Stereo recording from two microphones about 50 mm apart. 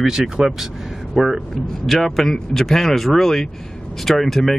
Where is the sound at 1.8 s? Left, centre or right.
Centre.